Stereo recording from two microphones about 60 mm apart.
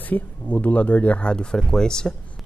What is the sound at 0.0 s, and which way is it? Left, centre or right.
Speech, left.